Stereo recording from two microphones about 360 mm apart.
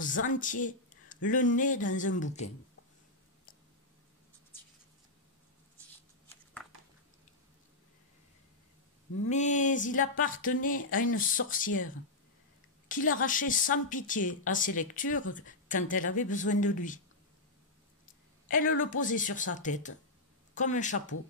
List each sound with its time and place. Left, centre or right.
0.0 s a woman's voice: left
9.3 s a woman's voice: centre
18.5 s a woman's voice: left